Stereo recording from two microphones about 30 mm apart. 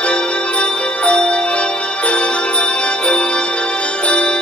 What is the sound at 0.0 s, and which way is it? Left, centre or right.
Music, left.